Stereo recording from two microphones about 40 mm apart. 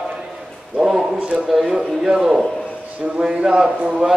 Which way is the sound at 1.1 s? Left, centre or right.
Right.